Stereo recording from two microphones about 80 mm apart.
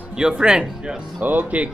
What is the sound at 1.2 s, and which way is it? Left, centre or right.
Speech, right.